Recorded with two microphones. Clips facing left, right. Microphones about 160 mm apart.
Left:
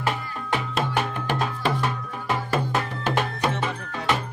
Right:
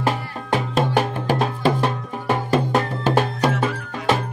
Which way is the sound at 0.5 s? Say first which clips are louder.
Right 6 dB; 40° right (ahead or behind).